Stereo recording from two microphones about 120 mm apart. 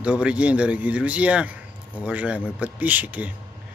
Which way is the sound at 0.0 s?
10° right (ahead or behind).